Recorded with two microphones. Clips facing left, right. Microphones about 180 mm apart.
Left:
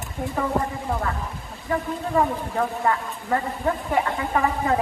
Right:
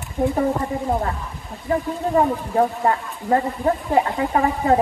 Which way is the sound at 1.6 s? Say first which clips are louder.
Right 4 dB; 30° right (ahead or behind).